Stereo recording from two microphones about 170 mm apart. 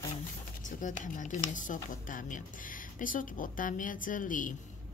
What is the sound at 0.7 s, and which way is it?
Speech, 50° left (ahead or behind).